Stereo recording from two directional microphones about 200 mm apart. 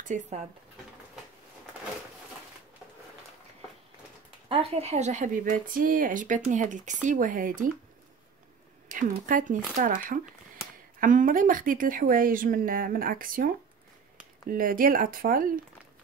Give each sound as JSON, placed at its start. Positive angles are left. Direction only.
{"t": 0.1, "sound": "speech", "side_deg": -40}
{"t": 4.5, "sound": "speech", "side_deg": -30}
{"t": 8.8, "sound": "speech", "side_deg": -45}
{"t": 14.5, "sound": "speech", "side_deg": -45}